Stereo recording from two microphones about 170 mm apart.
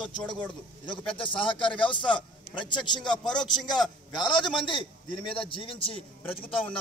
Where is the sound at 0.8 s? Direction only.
30° left (ahead or behind).